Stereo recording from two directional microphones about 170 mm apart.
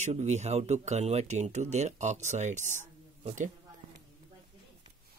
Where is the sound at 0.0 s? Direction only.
40° right (ahead or behind).